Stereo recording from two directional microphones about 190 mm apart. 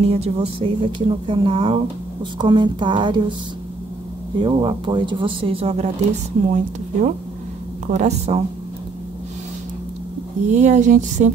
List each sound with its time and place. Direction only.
0.0 s speech: 35° right (ahead or behind)
4.4 s speech: 25° right (ahead or behind)
10.5 s speech: 40° right (ahead or behind)